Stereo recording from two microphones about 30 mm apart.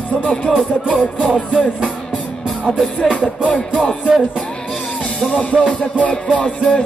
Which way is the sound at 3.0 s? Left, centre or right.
Left.